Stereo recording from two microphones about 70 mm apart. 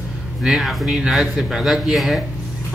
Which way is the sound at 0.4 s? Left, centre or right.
Centre.